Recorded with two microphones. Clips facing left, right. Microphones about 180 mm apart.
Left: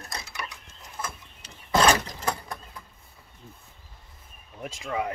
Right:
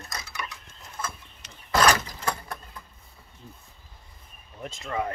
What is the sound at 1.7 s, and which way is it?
Vehicle, 25° left (ahead or behind).